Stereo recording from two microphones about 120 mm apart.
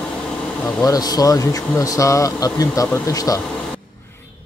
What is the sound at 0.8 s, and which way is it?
Speech, 30° left (ahead or behind).